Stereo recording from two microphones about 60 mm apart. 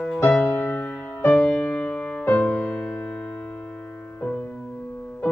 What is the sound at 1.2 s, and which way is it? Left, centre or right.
Music, centre.